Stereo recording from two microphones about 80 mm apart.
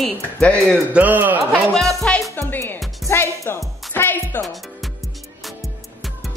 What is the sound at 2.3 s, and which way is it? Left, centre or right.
A woman's voice, left.